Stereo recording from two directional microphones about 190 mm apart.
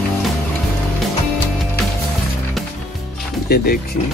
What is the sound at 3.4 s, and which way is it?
Speech, 55° left (ahead or behind).